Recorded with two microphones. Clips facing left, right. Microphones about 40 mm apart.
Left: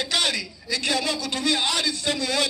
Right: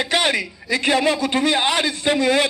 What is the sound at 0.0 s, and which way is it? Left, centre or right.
A man's voice, right.